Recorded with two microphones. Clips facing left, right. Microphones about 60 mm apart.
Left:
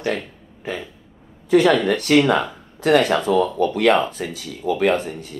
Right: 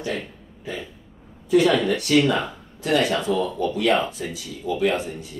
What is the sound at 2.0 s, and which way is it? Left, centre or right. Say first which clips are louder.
Speech: left 4 dB; left.